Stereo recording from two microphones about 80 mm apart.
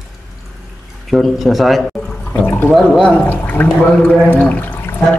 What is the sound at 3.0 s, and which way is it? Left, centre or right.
Speech, centre.